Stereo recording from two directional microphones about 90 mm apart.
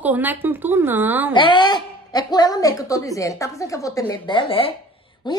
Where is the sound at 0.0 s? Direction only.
20° right (ahead or behind).